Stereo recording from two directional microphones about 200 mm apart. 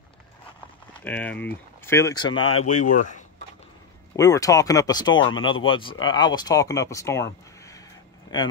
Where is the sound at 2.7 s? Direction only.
40° left (ahead or behind).